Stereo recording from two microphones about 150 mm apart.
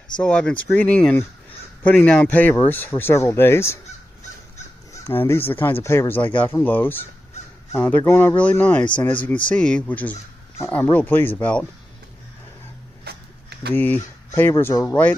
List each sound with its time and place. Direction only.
0.2 s speech: 5° left (ahead or behind)
5.0 s speech: 15° left (ahead or behind)
13.1 s a sound: 90° right
13.7 s speech: 15° left (ahead or behind)